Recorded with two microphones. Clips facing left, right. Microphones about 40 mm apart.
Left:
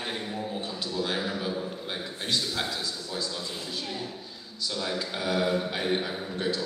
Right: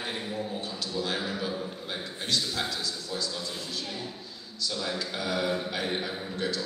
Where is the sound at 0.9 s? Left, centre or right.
Centre.